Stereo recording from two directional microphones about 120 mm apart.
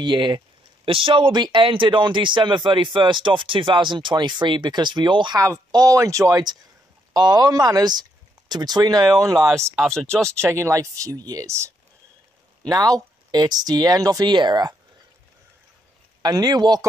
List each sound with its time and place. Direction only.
0.0 s speech: 40° right (ahead or behind)
9.3 s speech: 5° left (ahead or behind)
10.4 s speech: 25° right (ahead or behind)
16.2 s speech: 35° right (ahead or behind)